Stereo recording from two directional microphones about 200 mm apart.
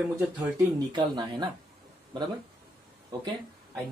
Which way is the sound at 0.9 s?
20° right (ahead or behind).